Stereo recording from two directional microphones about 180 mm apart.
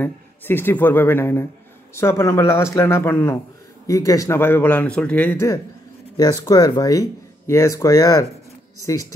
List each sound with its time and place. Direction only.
0.0 s speech: 10° left (ahead or behind)